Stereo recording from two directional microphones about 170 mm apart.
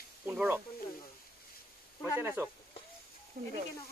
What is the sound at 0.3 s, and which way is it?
Snake, 10° right (ahead or behind).